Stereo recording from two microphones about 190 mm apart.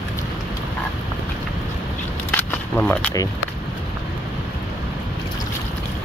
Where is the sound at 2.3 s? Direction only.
10° left (ahead or behind).